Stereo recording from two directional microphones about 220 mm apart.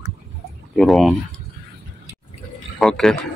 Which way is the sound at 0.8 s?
Centre (ahead or behind).